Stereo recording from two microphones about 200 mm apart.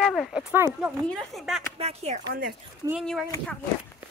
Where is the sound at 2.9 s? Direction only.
Centre (ahead or behind).